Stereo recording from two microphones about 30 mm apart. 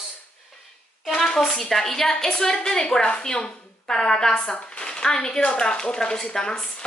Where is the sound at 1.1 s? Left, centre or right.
Centre.